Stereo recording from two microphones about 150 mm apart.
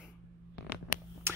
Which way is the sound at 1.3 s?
15° right (ahead or behind).